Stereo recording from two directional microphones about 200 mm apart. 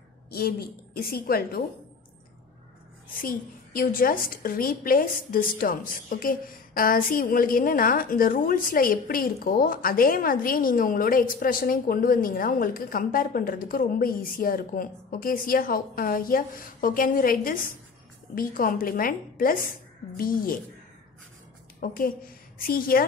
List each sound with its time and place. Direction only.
0.3 s a woman's voice: 50° left (ahead or behind)
3.2 s a woman's voice: 45° left (ahead or behind)
21.7 s a woman's voice: 45° left (ahead or behind)